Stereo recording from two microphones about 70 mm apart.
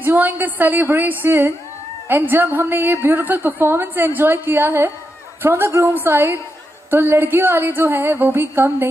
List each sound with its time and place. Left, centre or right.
0.0 s a woman's voice: right